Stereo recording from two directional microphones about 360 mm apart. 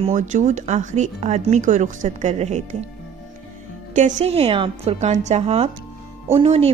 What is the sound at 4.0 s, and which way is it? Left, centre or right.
A woman's voice, centre.